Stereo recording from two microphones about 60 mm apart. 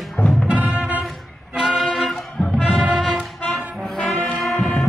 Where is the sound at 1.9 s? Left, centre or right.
Centre.